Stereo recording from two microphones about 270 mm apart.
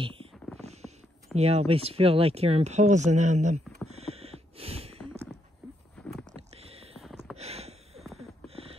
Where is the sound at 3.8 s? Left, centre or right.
Right.